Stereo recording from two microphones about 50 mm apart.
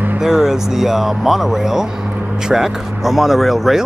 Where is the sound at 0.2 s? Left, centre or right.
Centre.